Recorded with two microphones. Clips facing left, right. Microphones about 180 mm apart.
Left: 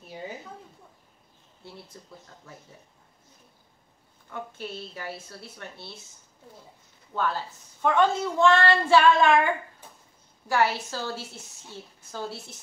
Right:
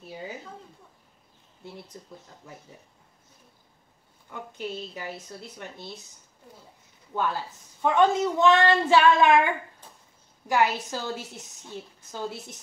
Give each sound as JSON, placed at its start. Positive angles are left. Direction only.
{"t": 1.9, "sound": "a woman's voice", "side_deg": -20}
{"t": 4.3, "sound": "a woman's voice", "side_deg": -15}
{"t": 7.1, "sound": "a woman's voice", "side_deg": -15}
{"t": 10.5, "sound": "a woman's voice", "side_deg": -15}